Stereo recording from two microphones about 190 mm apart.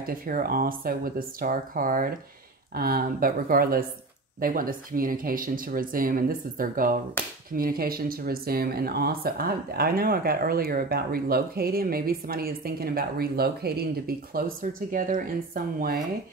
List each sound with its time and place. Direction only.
0.0 s speech: 50° right (ahead or behind)